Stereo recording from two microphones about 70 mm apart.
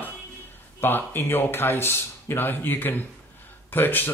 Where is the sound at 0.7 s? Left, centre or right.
Left.